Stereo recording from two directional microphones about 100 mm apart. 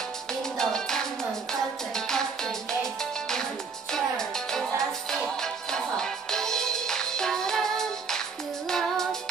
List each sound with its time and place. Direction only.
0.3 s music: 5° left (ahead or behind)